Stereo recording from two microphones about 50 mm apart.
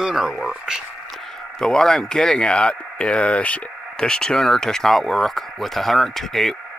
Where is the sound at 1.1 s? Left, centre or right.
Centre.